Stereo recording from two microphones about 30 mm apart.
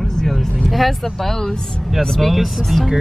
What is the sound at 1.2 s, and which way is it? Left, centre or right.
Speech, centre.